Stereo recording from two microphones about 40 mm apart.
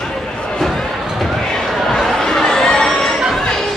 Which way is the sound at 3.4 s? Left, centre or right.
Centre.